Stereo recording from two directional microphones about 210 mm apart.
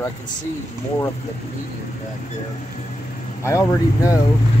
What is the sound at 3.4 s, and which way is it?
Speech, 15° left (ahead or behind).